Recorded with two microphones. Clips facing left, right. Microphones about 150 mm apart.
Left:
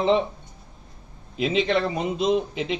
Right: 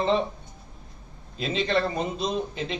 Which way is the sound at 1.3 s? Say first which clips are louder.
Left 3 dB; 15° left (ahead or behind).